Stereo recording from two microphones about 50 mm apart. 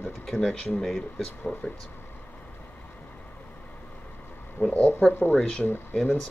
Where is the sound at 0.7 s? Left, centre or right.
Centre.